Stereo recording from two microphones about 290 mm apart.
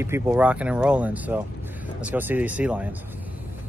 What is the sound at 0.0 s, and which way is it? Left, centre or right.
Speech, centre.